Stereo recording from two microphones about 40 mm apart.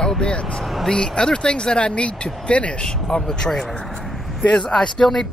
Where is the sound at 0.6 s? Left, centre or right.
Centre.